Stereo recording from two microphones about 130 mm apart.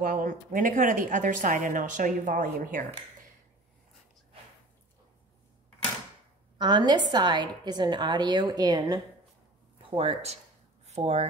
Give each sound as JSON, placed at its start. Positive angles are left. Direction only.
{"t": 0.0, "sound": "speech", "side_deg": -90}
{"t": 6.6, "sound": "a woman's voice", "side_deg": -35}
{"t": 9.8, "sound": "speech", "side_deg": -45}